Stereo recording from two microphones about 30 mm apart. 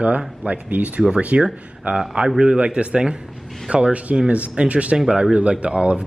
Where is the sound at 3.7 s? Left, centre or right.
Right.